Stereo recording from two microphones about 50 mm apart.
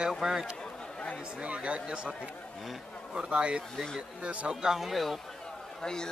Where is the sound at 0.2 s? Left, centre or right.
Centre.